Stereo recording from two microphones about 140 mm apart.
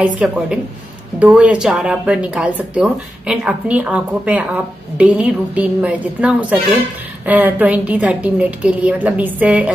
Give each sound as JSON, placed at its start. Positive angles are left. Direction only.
{"t": 0.0, "sound": "a woman's voice", "side_deg": -10}